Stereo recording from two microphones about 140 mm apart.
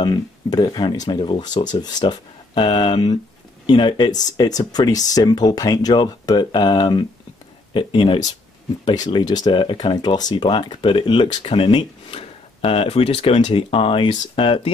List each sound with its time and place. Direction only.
0.0 s speech: 30° left (ahead or behind)